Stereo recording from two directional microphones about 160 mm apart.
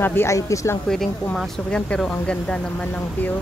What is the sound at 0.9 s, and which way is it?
Speech, centre (ahead or behind).